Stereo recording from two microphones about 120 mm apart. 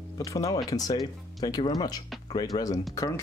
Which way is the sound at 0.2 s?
30° left (ahead or behind).